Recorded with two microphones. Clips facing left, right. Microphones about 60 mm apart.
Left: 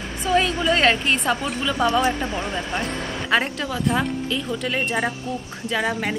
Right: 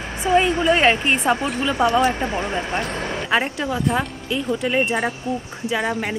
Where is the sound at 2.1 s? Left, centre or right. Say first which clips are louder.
Right 3 dB; right.